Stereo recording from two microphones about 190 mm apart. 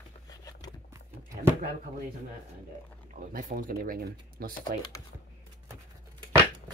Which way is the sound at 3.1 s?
45° right (ahead or behind).